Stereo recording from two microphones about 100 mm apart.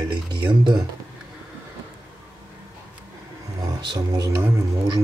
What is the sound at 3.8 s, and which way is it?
Speech, 45° right (ahead or behind).